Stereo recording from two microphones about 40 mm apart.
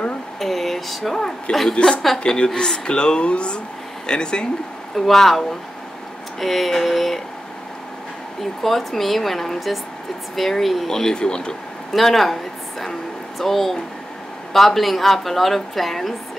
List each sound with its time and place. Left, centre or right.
0.4 s a woman's voice: centre; by 4.5 s left
4.9 s a woman's voice: centre
6.4 s a woman's voice: centre
8.4 s a woman's voice: centre
10.9 s a woman's voice: centre
11.9 s speech: centre
13.4 s a woman's voice: centre